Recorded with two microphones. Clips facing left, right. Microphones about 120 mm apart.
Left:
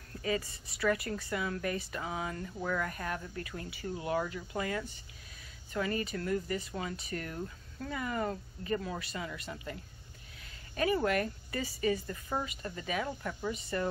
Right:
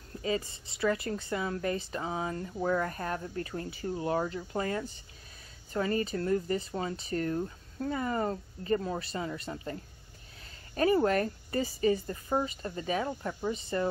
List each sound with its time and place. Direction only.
0.1 s a woman's voice: 25° right (ahead or behind)